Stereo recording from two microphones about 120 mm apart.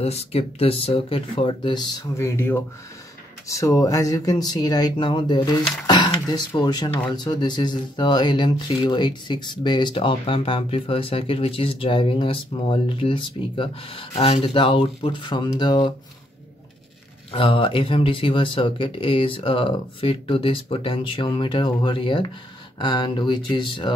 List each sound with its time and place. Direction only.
0.0 s speech: 60° left (ahead or behind); by 1.9 s 40° left (ahead or behind)
2.1 s speech: 20° left (ahead or behind); by 15.9 s 40° left (ahead or behind)
17.3 s speech: 45° left (ahead or behind)